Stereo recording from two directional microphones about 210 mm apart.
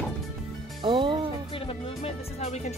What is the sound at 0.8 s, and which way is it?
Speech, 25° right (ahead or behind).